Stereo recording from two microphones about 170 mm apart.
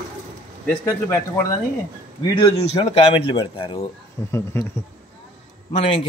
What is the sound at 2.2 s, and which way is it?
Speech, 30° left (ahead or behind).